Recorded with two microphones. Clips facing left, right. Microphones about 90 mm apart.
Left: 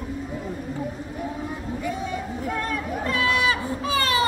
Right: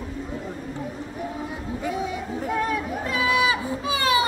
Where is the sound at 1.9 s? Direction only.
10° right (ahead or behind).